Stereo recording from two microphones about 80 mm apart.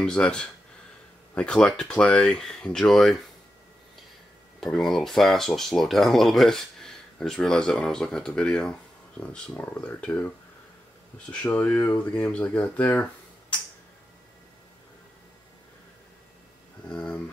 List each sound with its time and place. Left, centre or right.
0.0 s speech: centre
4.6 s speech: centre
11.4 s speech: left
11.9 s speech: centre
16.8 s speech: centre